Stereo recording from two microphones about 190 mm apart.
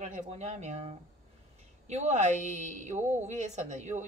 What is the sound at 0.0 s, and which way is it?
Speech, 35° right (ahead or behind).